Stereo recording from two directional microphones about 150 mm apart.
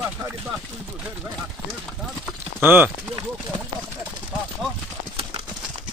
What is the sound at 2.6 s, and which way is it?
Speech, 15° right (ahead or behind).